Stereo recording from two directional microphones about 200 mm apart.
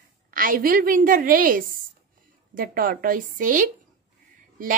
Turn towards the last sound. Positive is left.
turn(degrees=-40)  # may be behind; listen again after turning